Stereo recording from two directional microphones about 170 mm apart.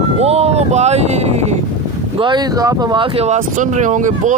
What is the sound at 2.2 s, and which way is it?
Speech, 25° right (ahead or behind).